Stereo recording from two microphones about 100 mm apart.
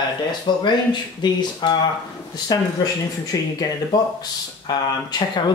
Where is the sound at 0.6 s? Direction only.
50° left (ahead or behind).